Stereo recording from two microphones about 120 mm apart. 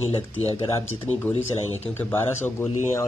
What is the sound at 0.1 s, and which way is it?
Speech, 55° left (ahead or behind).